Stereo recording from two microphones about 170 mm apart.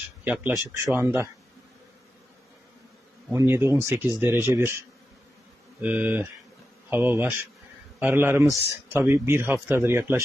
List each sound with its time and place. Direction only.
0.2 s speech: 10° right (ahead or behind)
3.3 s speech: 15° right (ahead or behind)